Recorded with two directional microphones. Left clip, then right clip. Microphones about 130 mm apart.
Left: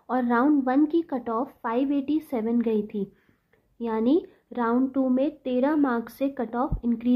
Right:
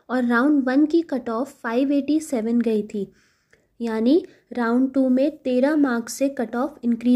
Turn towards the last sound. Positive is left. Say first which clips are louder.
# right 3 dB
turn(degrees=-25)  # may be behind; listen again after turning